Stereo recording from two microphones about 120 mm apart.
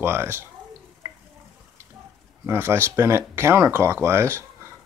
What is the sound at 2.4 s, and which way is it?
Speech, 20° right (ahead or behind).